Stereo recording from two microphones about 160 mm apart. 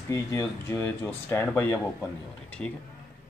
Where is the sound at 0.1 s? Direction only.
15° left (ahead or behind).